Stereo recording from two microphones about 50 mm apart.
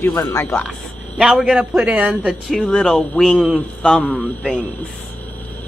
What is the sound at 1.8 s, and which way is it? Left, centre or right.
Speech, right.